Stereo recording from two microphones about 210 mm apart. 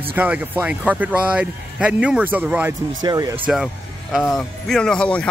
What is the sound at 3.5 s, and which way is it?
Speech, centre (ahead or behind).